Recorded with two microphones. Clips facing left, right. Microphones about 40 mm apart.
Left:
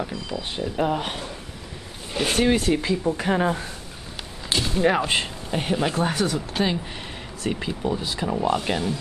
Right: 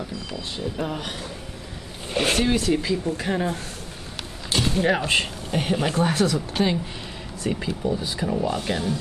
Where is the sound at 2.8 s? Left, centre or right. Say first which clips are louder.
Even; left.